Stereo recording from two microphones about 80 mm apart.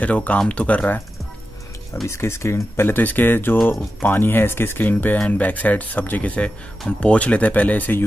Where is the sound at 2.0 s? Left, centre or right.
Left.